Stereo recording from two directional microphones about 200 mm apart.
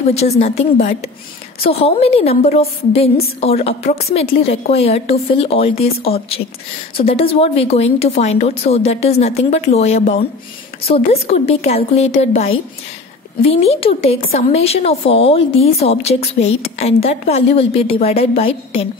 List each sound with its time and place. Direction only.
0.1 s a woman's voice: 30° left (ahead or behind)